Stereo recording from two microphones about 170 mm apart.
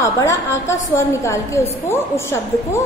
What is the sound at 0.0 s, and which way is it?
A woman's voice, 15° left (ahead or behind).